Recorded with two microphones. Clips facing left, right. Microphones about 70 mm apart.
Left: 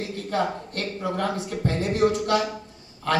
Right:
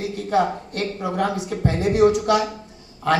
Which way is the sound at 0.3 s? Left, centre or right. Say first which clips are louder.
Right 6 dB; centre.